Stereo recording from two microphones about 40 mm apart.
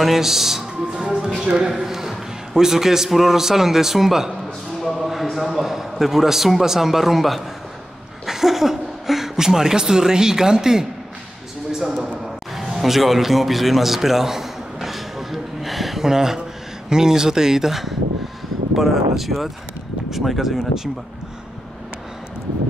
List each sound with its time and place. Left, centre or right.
0.0 s a man's voice: centre
1.0 s speech: right
1.7 s a man's voice: centre
12.5 s a sound: centre
16.0 s a man's voice: centre